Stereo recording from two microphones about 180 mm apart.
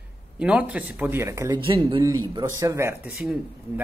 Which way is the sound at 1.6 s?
30° right (ahead or behind).